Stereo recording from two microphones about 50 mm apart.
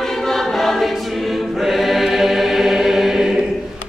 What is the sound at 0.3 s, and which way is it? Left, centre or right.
Choir, centre.